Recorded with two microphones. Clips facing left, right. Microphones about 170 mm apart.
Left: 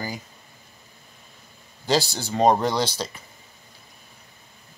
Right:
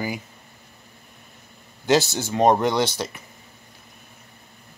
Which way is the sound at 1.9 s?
20° right (ahead or behind).